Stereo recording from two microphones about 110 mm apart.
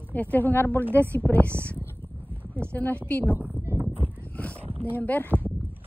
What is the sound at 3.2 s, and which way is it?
Speech, 15° right (ahead or behind).